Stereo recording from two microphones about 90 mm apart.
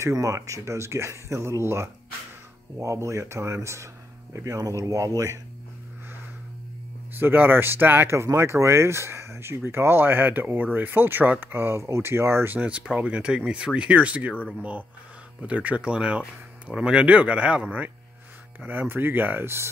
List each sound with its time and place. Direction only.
0.0 s speech: 35° right (ahead or behind)
7.2 s speech: 20° right (ahead or behind)
12.5 s speech: 15° right (ahead or behind)